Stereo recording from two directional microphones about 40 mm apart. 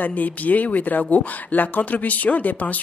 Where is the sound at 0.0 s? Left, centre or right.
Left.